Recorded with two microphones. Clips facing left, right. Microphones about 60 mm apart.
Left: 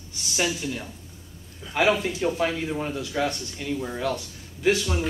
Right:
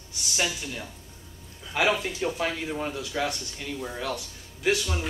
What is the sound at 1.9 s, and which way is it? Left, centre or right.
Speech, left.